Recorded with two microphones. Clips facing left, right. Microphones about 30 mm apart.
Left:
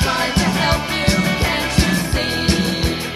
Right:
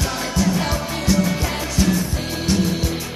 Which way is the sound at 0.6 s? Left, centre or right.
Left.